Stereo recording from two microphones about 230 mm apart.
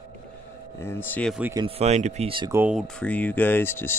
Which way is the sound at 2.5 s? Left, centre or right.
Centre.